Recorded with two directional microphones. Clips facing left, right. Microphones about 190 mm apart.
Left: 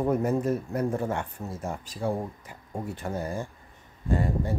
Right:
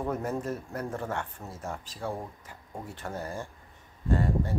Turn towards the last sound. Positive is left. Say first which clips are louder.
# left 1 dB
turn(degrees=15)  # may be behind; listen again after turning